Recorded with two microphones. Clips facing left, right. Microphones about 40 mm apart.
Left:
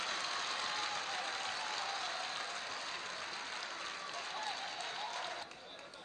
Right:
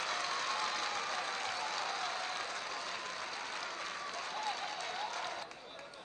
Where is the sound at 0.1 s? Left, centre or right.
Right.